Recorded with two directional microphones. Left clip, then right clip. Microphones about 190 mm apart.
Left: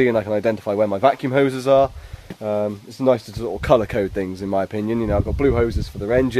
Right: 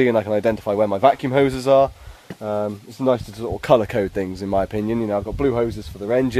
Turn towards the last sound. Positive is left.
turn(degrees=0)  # may be behind; listen again after turning